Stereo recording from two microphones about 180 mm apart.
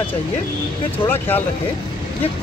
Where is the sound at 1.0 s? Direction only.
10° left (ahead or behind).